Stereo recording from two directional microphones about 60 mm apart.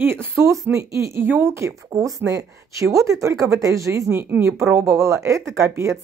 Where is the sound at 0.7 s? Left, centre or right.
Right.